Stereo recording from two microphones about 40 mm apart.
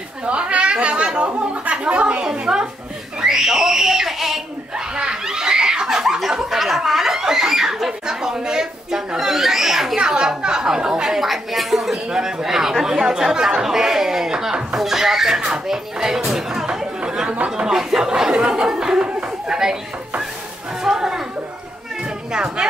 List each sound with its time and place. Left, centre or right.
0.3 s a sound: right
2.2 s a sound: centre
3.2 s screaming: centre
4.9 s belly laugh: centre
6.0 s snicker: centre
6.3 s speech: centre
12.1 s speech: centre
16.3 s chatter: centre
17.6 s speech: centre
22.3 s speech: centre